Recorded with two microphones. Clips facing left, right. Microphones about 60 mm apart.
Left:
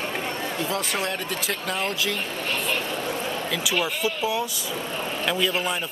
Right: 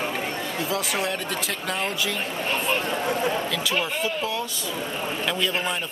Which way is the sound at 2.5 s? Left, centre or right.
Centre.